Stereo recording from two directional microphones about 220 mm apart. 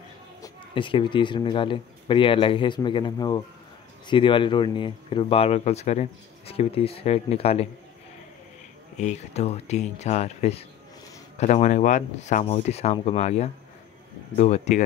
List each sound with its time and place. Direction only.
0.4 s speech: 20° left (ahead or behind)
8.9 s speech: 30° left (ahead or behind)